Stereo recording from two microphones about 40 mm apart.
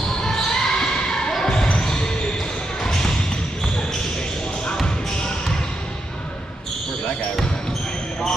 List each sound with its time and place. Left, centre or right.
0.2 s basketball bounce: centre